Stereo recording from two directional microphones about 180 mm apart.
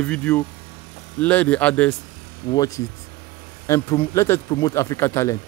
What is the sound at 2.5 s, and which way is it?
Speech, 20° left (ahead or behind).